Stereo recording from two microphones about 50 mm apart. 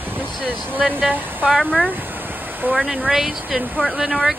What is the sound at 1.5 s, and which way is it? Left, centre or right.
Speech, centre.